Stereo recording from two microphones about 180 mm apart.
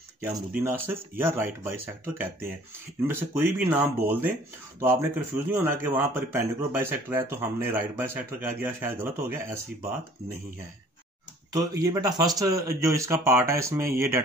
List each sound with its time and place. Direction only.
0.2 s speech: 10° right (ahead or behind)
11.5 s speech: 20° right (ahead or behind)